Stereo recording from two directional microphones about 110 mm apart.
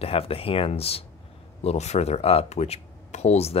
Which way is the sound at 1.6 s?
80° left.